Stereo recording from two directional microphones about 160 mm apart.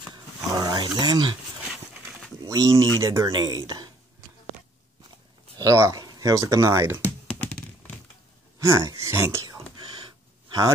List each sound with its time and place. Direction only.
0.5 s speech: 20° right (ahead or behind)
2.4 s speech: 20° right (ahead or behind)
5.6 s speech: 20° right (ahead or behind)
8.5 s speech: 15° right (ahead or behind)
9.8 s gasp: 30° right (ahead or behind)